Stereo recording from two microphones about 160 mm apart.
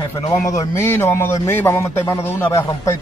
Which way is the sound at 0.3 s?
20° left (ahead or behind).